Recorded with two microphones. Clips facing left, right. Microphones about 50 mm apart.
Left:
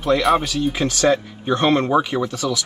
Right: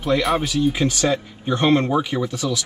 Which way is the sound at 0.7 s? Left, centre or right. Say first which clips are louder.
Left 2 dB; left.